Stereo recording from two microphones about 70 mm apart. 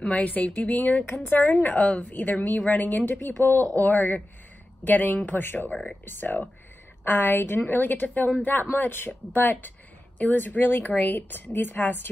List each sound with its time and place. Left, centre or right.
0.0 s a woman's voice: left
5.7 s speech: centre
6.0 s a woman's voice: left